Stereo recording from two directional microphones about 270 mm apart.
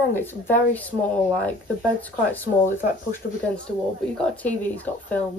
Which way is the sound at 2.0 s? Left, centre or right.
Centre.